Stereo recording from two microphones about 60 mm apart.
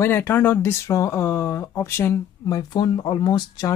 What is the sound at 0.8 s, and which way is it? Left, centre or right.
Speech, left.